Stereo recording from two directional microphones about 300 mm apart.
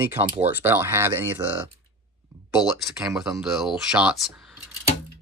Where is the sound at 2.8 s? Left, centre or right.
Centre.